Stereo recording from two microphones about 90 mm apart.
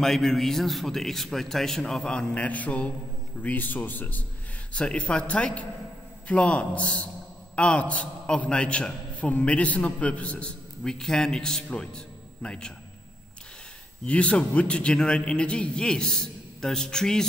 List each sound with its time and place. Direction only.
0.0 s a man's voice: 5° left (ahead or behind)
14.0 s a man's voice: 15° left (ahead or behind)